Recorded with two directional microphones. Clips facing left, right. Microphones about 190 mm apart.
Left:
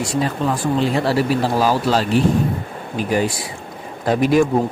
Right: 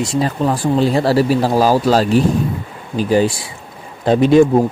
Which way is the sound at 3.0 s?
30° right (ahead or behind).